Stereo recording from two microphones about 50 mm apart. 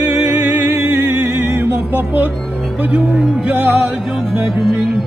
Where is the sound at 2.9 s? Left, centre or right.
Right.